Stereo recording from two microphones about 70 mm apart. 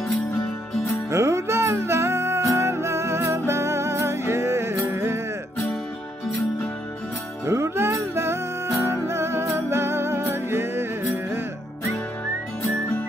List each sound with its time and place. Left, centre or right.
1.1 s music: right
7.4 s music: right